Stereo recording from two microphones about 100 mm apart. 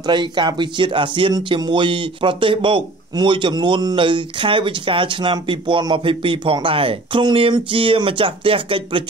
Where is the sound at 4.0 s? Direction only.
55° right (ahead or behind).